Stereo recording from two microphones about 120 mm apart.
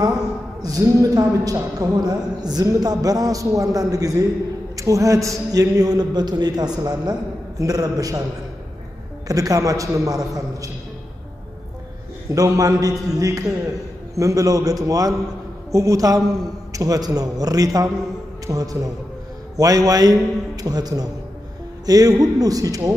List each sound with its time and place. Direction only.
0.6 s a man's voice: 30° right (ahead or behind)
9.3 s a man's voice: 30° right (ahead or behind)
12.3 s a man's voice: 30° right (ahead or behind)